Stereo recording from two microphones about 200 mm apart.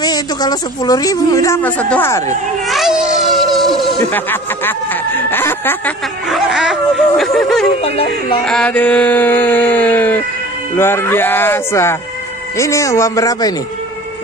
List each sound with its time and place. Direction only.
0.0 s speech: 20° left (ahead or behind)
2.7 s speech: centre (ahead or behind)
6.2 s snicker: 5° right (ahead or behind)
7.8 s speech: 30° left (ahead or behind)
8.5 s a sound: 5° left (ahead or behind)
10.8 s speech: 10° left (ahead or behind)